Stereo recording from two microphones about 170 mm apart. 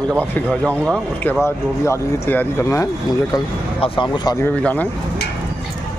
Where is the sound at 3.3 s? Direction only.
30° left (ahead or behind).